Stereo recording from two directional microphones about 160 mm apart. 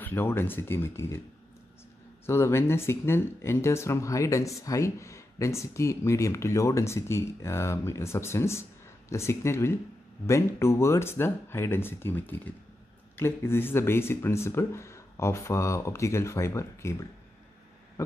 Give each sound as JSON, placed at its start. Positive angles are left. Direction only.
{"t": 0.0, "sound": "speech", "side_deg": 15}
{"t": 2.2, "sound": "speech", "side_deg": 15}